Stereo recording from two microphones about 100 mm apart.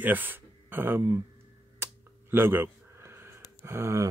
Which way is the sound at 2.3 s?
20° right (ahead or behind).